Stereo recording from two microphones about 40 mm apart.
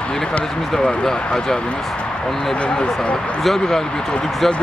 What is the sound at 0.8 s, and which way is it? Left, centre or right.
Speech, centre.